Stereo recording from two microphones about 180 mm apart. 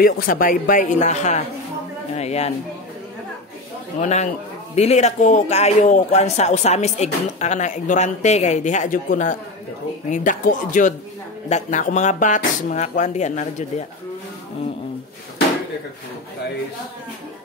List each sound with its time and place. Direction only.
0.0 s speech: 50° left (ahead or behind)
4.0 s speech: 40° left (ahead or behind)